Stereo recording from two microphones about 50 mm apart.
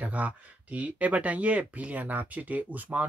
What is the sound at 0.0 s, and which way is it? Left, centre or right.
Speech, right.